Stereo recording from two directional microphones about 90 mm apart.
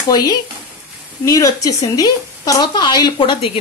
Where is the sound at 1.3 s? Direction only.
40° left (ahead or behind); by 3.6 s 75° left (ahead or behind).